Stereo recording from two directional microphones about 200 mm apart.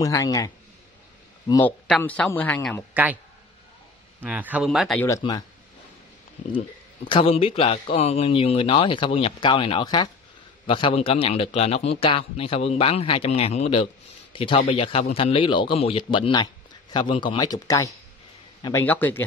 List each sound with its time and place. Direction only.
0.0 s speech: 15° left (ahead or behind)
1.5 s speech: 10° left (ahead or behind)
2.9 s a man's voice: 10° right (ahead or behind)
4.2 s speech: 10° right (ahead or behind)
5.0 s speech: 15° left (ahead or behind)
7.1 s a man's voice: 25° left (ahead or behind); by 19.2 s 10° left (ahead or behind)